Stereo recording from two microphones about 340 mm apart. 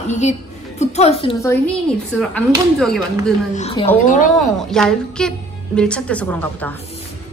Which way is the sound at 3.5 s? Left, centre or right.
Centre.